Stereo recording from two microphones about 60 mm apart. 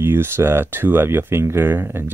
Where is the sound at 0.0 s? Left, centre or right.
Right.